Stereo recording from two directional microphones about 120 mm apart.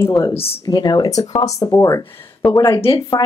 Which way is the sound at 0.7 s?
35° left (ahead or behind).